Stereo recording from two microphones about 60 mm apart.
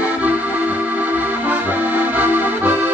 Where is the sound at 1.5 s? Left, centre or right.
Right.